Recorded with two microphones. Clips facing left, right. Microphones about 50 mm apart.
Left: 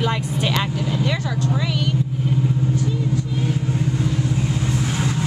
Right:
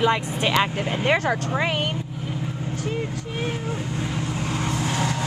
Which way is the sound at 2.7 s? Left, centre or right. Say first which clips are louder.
Left 5 dB; right.